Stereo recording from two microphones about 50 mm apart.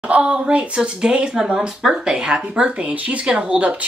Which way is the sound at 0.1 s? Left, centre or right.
Right.